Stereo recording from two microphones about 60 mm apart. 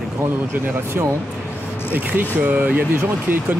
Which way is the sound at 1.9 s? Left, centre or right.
Right.